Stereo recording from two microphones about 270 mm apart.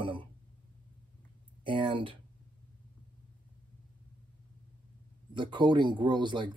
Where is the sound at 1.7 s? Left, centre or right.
Centre.